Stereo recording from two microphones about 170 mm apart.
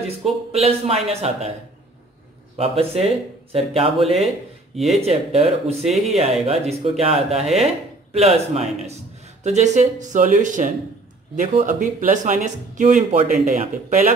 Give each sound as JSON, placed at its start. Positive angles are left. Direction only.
{"t": 0.2, "sound": "speech", "side_deg": -35}
{"t": 2.5, "sound": "speech", "side_deg": -35}
{"t": 4.7, "sound": "speech", "side_deg": 0}
{"t": 5.0, "sound": "speech", "side_deg": -35}
{"t": 9.4, "sound": "speech", "side_deg": -45}